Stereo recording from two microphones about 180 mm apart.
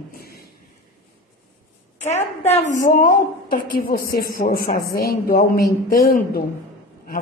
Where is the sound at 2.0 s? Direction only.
40° left (ahead or behind).